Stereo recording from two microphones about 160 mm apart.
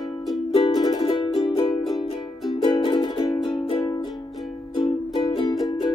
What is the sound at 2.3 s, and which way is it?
Music, centre (ahead or behind).